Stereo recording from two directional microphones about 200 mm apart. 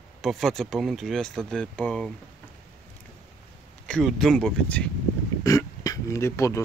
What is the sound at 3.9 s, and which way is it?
Speech, centre (ahead or behind).